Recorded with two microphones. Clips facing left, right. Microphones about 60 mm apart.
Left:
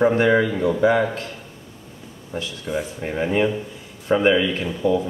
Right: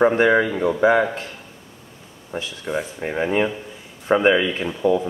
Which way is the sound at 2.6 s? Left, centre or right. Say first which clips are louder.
Right 1 dB; centre.